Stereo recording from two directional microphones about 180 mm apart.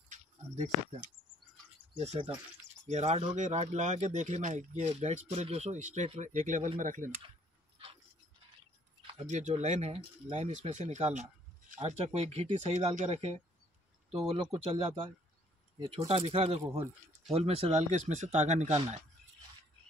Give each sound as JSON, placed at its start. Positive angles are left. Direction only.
{"t": 2.0, "sound": "speech", "side_deg": -35}
{"t": 9.2, "sound": "speech", "side_deg": -40}
{"t": 16.1, "sound": "speech", "side_deg": -30}